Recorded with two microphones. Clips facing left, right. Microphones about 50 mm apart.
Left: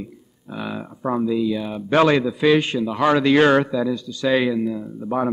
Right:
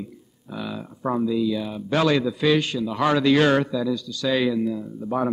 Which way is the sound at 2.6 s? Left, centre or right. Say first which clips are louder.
Left 3 dB; left.